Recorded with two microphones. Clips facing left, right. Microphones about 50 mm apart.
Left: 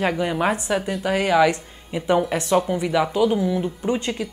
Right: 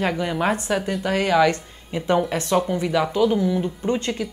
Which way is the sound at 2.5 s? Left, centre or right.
Centre.